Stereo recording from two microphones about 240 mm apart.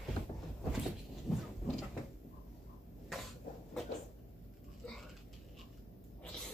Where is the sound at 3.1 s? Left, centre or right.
Centre.